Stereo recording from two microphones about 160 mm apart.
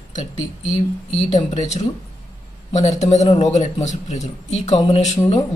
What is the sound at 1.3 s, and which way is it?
Speech, 45° left (ahead or behind).